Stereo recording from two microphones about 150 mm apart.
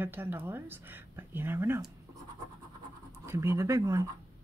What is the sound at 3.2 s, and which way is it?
Speech, 20° right (ahead or behind).